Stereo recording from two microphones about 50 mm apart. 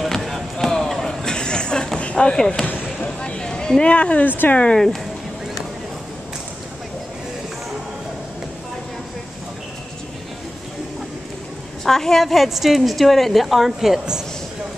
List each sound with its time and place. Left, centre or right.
0.0 s basketball bounce: centre
2.1 s a woman's voice: centre
2.6 s a sound: left
4.3 s speech: left
4.7 s a woman's voice: centre
11.8 s a woman's voice: centre